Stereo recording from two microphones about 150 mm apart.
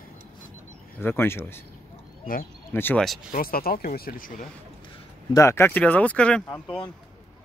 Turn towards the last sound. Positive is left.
turn(degrees=5)  # may be behind; listen again after turning